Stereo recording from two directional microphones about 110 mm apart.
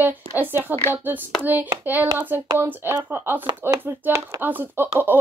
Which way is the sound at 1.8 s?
15° right (ahead or behind).